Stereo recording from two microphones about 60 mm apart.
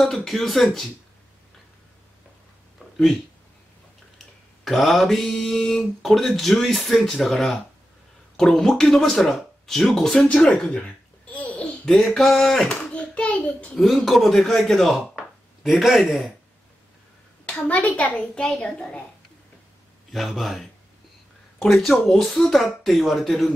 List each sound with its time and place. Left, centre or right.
0.0 s speech: centre
4.6 s speech: centre
10.2 s a sound: centre
11.9 s speech: centre
12.9 s a child's voice: left
13.7 s speech: centre
17.5 s a child's voice: left
20.1 s speech: centre